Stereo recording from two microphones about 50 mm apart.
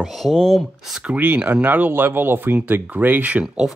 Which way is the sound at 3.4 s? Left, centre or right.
Centre.